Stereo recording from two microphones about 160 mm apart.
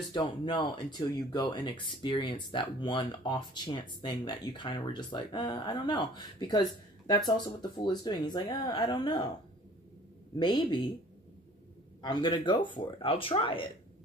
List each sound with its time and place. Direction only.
0.1 s speech: 30° left (ahead or behind)
10.3 s speech: 30° left (ahead or behind)
12.0 s speech: 30° left (ahead or behind)